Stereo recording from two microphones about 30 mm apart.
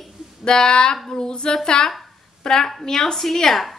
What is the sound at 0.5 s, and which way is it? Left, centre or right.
A woman's voice, left.